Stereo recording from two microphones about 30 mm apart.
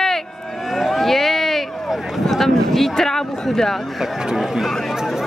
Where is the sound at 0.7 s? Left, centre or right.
Centre.